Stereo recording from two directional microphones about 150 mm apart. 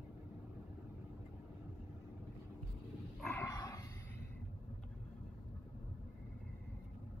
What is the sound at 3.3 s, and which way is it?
Dog, 15° left (ahead or behind).